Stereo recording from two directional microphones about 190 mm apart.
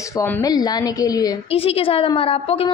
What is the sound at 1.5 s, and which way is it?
A woman's voice, 30° left (ahead or behind).